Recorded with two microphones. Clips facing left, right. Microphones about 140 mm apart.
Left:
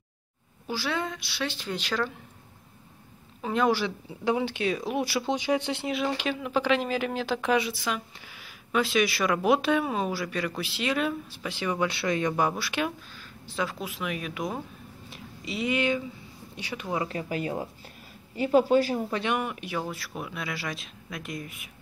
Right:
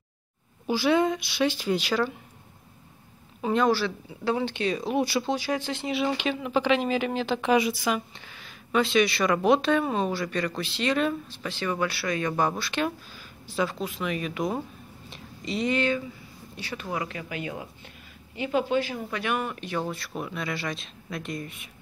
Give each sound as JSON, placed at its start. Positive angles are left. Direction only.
{"t": 0.7, "sound": "speech", "side_deg": -15}
{"t": 3.5, "sound": "speech", "side_deg": 15}
{"t": 5.2, "sound": "speech", "side_deg": 15}
{"t": 5.9, "sound": "speech", "side_deg": 0}
{"t": 7.5, "sound": "speech", "side_deg": -10}
{"t": 8.3, "sound": "speech", "side_deg": 10}
{"t": 17.0, "sound": "speech", "side_deg": 35}
{"t": 19.3, "sound": "speech", "side_deg": 15}